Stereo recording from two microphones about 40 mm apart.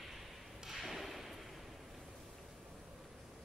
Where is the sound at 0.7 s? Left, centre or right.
Centre.